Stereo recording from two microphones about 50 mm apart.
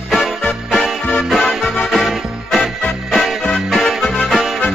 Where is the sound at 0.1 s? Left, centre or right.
Centre.